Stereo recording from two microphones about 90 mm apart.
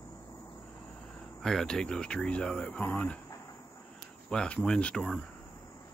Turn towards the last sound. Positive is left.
turn(degrees=10)  # may be behind; listen again after turning